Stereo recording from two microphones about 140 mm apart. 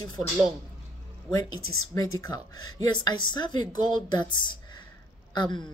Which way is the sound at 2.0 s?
25° left (ahead or behind).